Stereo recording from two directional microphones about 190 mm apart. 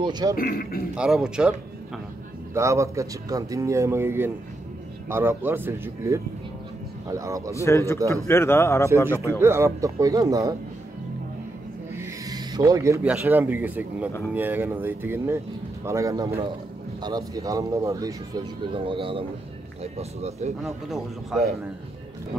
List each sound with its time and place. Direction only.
0.0 s speech: 20° right (ahead or behind)
0.4 s a man's voice: 50° left (ahead or behind)
0.9 s a man's voice: 5° right (ahead or behind)
2.5 s speech: 15° right (ahead or behind)
7.5 s a man's voice: 15° left (ahead or behind)
9.4 s speech: 15° right (ahead or behind)
11.9 s speech: 15° right (ahead or behind)
16.3 s speech: 30° right (ahead or behind)
17.0 s speech: 20° right (ahead or behind); by 20.5 s 35° right (ahead or behind)
20.6 s a man's voice: centre (ahead or behind)